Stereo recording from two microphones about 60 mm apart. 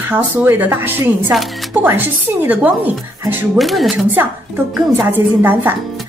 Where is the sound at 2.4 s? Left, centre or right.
Right.